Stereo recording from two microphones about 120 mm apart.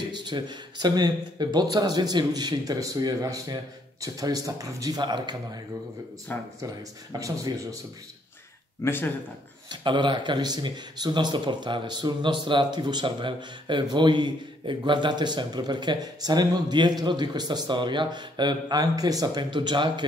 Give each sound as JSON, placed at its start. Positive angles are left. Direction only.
{"t": 0.1, "sound": "speech", "side_deg": -35}
{"t": 6.3, "sound": "speech", "side_deg": 15}
{"t": 6.6, "sound": "speech", "side_deg": -30}
{"t": 8.8, "sound": "speech", "side_deg": 20}
{"t": 9.7, "sound": "speech", "side_deg": -40}